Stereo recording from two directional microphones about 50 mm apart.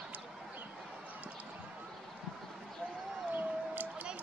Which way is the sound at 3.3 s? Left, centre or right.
Right.